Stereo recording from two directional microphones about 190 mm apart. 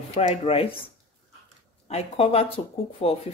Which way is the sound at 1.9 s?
30° left (ahead or behind).